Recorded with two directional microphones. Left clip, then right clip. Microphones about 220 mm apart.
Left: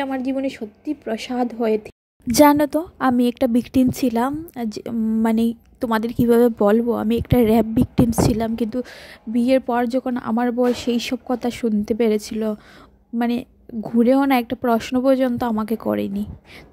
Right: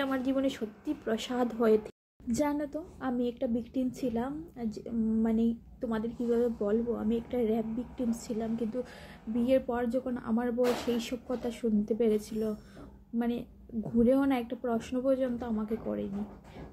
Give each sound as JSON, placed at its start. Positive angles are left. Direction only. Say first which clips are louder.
{"t": 0.0, "sound": "a woman's voice", "louder": "left 7 dB", "side_deg": 30}
{"t": 2.2, "sound": "speech", "louder": "left 18 dB", "side_deg": 50}